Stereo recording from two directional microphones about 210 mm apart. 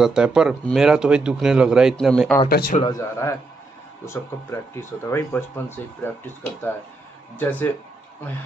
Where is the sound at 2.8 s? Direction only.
15° left (ahead or behind).